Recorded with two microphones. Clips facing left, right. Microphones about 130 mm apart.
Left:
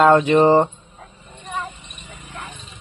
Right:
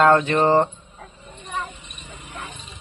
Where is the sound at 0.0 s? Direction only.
15° left (ahead or behind).